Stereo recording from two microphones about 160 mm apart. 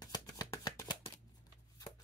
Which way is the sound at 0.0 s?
20° left (ahead or behind).